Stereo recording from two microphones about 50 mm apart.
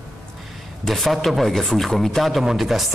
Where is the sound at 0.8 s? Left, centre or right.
Centre.